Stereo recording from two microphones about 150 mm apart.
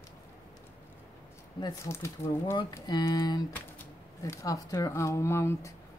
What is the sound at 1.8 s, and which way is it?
Speech, 20° left (ahead or behind).